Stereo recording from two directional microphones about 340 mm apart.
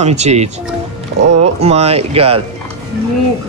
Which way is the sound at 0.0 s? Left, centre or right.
Centre.